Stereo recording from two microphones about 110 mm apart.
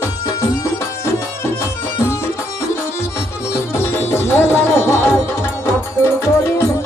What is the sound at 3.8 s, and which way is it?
Music, 20° left (ahead or behind).